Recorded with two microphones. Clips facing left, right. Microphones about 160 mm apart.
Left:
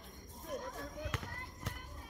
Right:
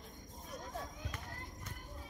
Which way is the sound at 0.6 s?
60° left (ahead or behind).